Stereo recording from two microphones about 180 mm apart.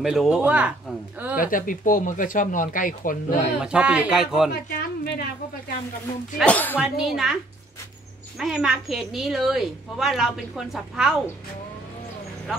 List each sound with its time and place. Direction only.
0.0 s speech: 5° right (ahead or behind)
1.3 s speech: 50° left (ahead or behind)
3.6 s a woman's voice: 5° right (ahead or behind)
4.5 s a woman's voice: 60° left (ahead or behind)
6.3 s speech: 5° left (ahead or behind)
6.8 s a woman's voice: centre (ahead or behind)
8.4 s a woman's voice: centre (ahead or behind)